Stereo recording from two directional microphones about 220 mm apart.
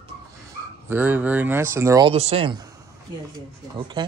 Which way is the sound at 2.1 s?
30° right (ahead or behind).